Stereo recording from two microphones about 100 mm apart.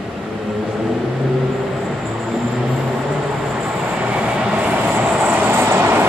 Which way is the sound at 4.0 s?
15° right (ahead or behind).